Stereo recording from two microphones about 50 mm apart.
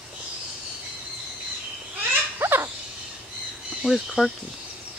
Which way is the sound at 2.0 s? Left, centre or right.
Right.